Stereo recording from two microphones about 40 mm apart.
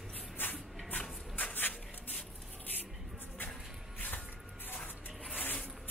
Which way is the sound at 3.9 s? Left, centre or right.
Left.